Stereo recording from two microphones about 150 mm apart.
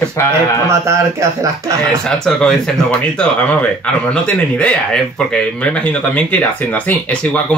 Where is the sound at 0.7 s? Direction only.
20° right (ahead or behind).